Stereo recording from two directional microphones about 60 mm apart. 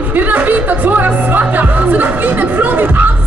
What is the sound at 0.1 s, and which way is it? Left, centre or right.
Music, right.